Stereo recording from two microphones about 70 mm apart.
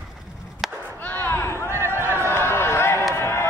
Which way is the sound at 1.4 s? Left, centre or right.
Left.